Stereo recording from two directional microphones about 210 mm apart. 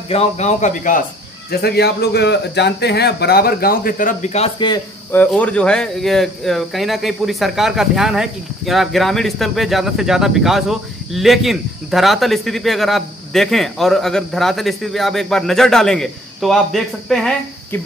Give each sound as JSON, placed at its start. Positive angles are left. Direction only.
{"t": 0.1, "sound": "speech", "side_deg": 35}
{"t": 1.5, "sound": "a man's voice", "side_deg": 50}
{"t": 5.1, "sound": "speech", "side_deg": 10}